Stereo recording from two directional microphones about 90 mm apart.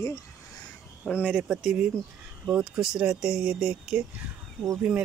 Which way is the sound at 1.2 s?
10° right (ahead or behind).